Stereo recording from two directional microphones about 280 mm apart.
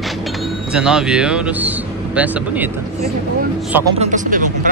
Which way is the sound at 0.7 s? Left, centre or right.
Centre.